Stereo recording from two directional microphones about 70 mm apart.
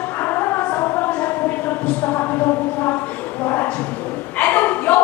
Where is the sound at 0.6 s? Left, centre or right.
Left.